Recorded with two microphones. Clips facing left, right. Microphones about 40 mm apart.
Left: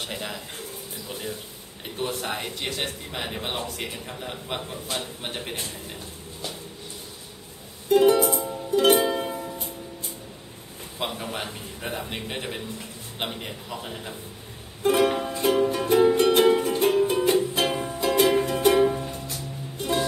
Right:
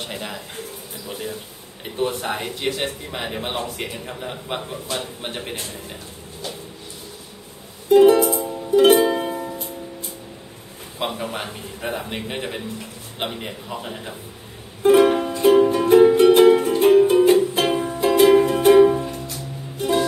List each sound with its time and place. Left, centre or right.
0.0 s speech: centre
7.9 s music: centre
9.2 s music: centre
11.0 s speech: centre
14.8 s music: centre